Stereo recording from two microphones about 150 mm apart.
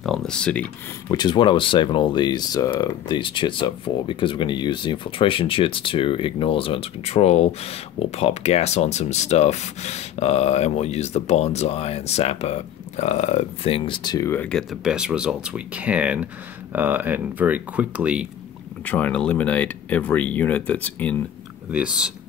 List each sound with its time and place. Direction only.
0.0 s speech: 5° left (ahead or behind)
1.0 s speech: 30° left (ahead or behind)
14.3 s speech: 5° left (ahead or behind)
18.9 s speech: 10° left (ahead or behind)
21.6 s speech: 5° right (ahead or behind)